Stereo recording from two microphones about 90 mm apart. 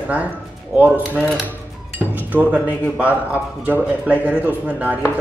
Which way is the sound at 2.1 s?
20° right (ahead or behind).